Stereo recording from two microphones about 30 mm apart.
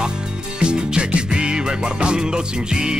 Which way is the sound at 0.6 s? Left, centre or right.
Right.